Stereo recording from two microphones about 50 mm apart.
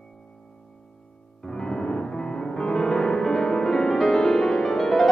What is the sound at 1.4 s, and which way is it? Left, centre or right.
Music, centre.